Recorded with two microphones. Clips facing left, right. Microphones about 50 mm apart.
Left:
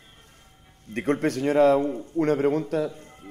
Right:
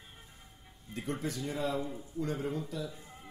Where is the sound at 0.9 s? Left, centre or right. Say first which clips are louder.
Left 12 dB; left.